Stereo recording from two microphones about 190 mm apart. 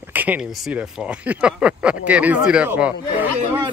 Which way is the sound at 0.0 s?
10° right (ahead or behind).